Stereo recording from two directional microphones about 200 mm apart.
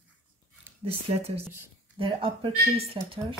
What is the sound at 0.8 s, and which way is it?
Speech, 30° right (ahead or behind).